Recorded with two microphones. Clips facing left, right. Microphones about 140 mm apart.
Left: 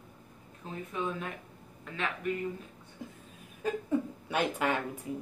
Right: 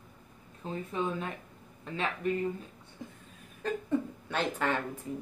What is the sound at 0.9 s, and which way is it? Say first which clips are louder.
Speech: right 2 dB; 30° right (ahead or behind).